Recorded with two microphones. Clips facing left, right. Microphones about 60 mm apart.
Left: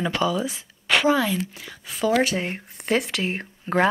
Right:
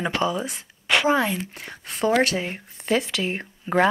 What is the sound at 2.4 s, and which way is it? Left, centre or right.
Speech, centre.